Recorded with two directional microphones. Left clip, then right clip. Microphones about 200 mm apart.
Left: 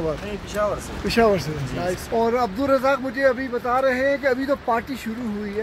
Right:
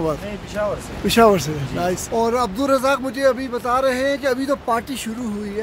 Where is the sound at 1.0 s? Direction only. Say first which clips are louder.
Right 5 dB; 30° right (ahead or behind).